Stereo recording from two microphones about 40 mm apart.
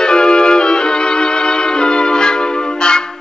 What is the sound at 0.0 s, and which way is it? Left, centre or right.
Music, centre.